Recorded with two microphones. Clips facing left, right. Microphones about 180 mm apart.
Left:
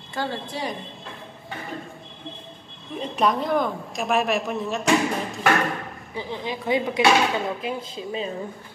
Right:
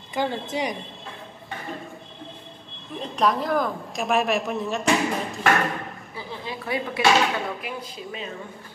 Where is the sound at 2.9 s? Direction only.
Centre (ahead or behind).